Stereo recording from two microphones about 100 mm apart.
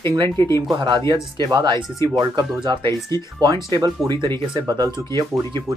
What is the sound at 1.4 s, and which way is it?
Speech, 40° right (ahead or behind).